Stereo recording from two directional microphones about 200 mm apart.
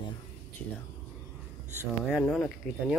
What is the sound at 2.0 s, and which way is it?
Speech, centre (ahead or behind).